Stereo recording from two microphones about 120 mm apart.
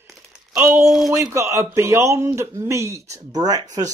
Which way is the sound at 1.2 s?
25° right (ahead or behind).